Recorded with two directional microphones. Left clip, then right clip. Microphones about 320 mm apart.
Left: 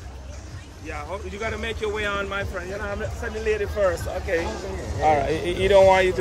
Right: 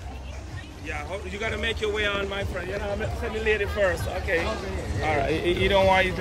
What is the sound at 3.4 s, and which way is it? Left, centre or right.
Speech, centre.